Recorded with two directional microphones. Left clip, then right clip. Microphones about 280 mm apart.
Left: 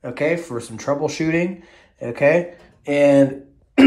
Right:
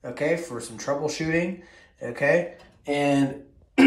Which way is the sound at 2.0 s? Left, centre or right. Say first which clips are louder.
Left 6 dB; centre.